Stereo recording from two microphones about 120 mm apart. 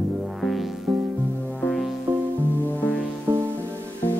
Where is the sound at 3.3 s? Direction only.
20° right (ahead or behind).